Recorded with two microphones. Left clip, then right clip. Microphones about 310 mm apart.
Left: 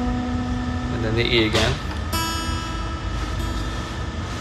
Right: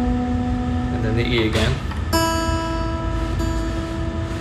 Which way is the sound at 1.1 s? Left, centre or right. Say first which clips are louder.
Left 3 dB; left.